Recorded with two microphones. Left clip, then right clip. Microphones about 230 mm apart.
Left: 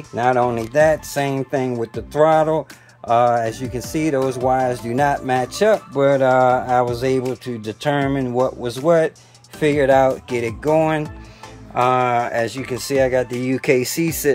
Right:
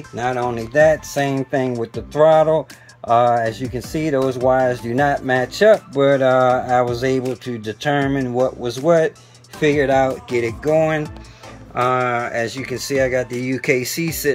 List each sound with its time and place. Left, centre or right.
0.1 s speech: centre
13.4 s speech: left
13.7 s speech: centre